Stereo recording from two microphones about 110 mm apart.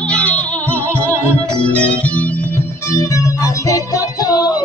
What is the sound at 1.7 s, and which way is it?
Organ, 15° left (ahead or behind).